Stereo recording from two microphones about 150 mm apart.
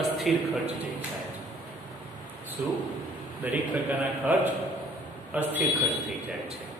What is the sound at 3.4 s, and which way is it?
Speech, 10° right (ahead or behind).